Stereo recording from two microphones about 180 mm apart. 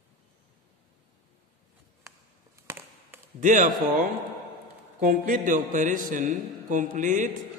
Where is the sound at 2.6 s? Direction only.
10° right (ahead or behind).